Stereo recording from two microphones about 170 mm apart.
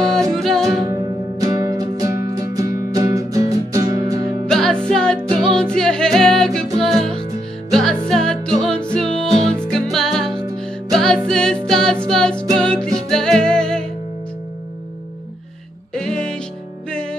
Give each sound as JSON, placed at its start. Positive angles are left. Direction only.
{"t": 0.4, "sound": "music", "side_deg": 0}
{"t": 0.8, "sound": "music", "side_deg": -20}
{"t": 4.5, "sound": "music", "side_deg": 5}
{"t": 15.9, "sound": "music", "side_deg": 5}